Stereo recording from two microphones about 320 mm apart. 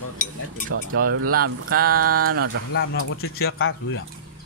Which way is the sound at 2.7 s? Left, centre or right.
Left.